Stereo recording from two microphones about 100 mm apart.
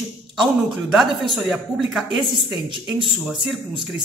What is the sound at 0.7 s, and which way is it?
A woman's voice, 5° right (ahead or behind).